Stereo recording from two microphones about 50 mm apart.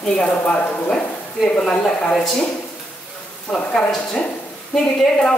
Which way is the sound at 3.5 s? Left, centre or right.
Left.